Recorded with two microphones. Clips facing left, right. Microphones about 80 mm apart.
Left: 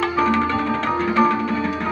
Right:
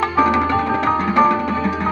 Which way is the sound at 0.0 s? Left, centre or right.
Centre.